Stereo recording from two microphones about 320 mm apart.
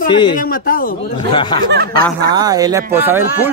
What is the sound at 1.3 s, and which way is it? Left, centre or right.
Speech, centre.